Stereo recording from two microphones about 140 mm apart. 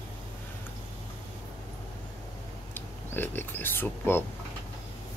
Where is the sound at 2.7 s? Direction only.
15° left (ahead or behind).